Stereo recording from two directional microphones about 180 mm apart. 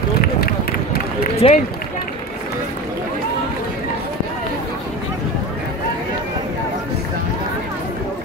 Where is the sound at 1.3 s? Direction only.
35° left (ahead or behind).